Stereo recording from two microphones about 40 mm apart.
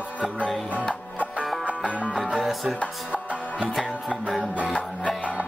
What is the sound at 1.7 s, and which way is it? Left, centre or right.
Music, right.